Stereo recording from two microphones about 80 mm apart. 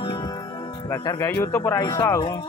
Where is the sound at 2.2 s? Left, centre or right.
Left.